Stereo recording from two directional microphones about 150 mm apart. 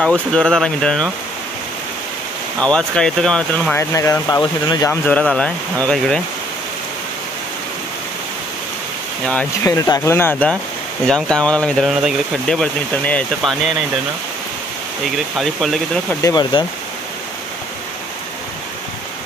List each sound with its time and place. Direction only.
0.0 s speech: 5° left (ahead or behind)
2.6 s speech: 5° left (ahead or behind); by 4.9 s 25° left (ahead or behind)
5.0 s speech: 5° left (ahead or behind)
9.2 s speech: 10° left (ahead or behind)
9.7 s speech: 25° left (ahead or behind); by 13.6 s 5° left (ahead or behind)
15.3 s speech: centre (ahead or behind)
16.2 s speech: 20° left (ahead or behind)